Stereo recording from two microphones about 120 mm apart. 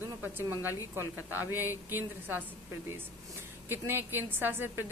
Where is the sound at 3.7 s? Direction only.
20° right (ahead or behind).